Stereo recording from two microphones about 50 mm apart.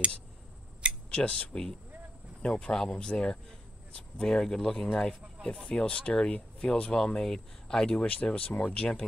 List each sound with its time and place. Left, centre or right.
1.1 s speech: left
8.1 s speech: left